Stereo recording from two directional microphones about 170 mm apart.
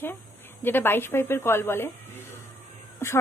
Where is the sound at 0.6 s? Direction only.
10° left (ahead or behind).